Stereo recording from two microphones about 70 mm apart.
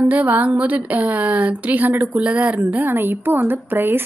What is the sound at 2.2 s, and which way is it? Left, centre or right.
A woman's voice, centre.